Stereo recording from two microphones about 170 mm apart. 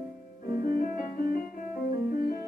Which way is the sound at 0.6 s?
60° left (ahead or behind).